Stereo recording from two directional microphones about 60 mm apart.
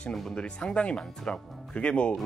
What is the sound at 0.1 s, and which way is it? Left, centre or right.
A man's voice, centre.